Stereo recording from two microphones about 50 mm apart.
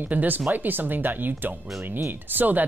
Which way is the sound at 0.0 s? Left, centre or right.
Right.